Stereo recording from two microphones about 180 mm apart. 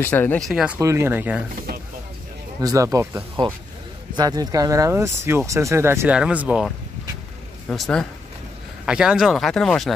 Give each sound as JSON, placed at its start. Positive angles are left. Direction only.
{"t": 0.0, "sound": "speech", "side_deg": 10}
{"t": 0.7, "sound": "speech", "side_deg": -15}
{"t": 2.6, "sound": "speech", "side_deg": -20}
{"t": 7.7, "sound": "speech", "side_deg": 0}